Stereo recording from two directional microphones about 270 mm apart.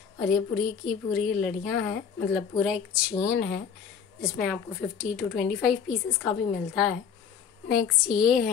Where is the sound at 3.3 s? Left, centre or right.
Left.